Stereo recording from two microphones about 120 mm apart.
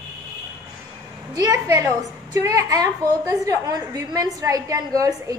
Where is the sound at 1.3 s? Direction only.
30° right (ahead or behind).